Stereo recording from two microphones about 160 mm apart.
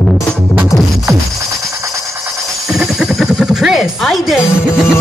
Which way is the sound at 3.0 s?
Centre (ahead or behind).